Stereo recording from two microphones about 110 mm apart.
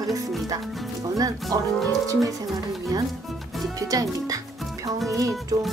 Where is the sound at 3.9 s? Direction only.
35° right (ahead or behind).